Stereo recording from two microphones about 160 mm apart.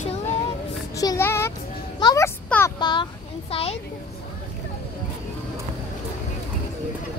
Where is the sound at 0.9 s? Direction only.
20° left (ahead or behind); by 3.8 s 35° left (ahead or behind).